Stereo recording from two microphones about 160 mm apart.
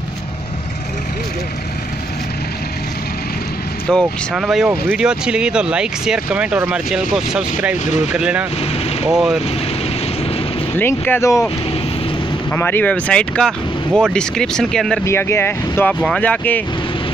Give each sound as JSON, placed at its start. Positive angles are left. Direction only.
{"t": 3.9, "sound": "speech", "side_deg": 0}
{"t": 7.8, "sound": "speech", "side_deg": 45}
{"t": 8.1, "sound": "speech", "side_deg": -5}
{"t": 10.8, "sound": "speech", "side_deg": 15}
{"t": 12.5, "sound": "speech", "side_deg": 15}
{"t": 15.0, "sound": "speech", "side_deg": 15}
{"t": 15.9, "sound": "speech", "side_deg": 5}